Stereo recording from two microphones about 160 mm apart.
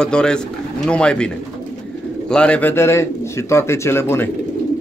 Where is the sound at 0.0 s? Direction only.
5° left (ahead or behind).